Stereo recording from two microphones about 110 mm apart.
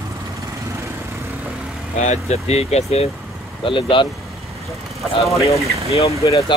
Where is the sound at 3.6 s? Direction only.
50° left (ahead or behind).